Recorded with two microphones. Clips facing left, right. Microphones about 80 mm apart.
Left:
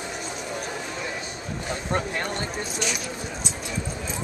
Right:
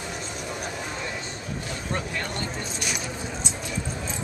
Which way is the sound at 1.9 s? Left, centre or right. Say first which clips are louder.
Left 3 dB; left.